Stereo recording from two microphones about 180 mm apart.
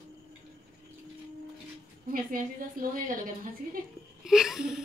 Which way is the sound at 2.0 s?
50° right (ahead or behind).